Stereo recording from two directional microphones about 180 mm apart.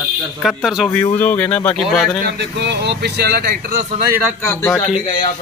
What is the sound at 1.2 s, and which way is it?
Speech, 10° left (ahead or behind).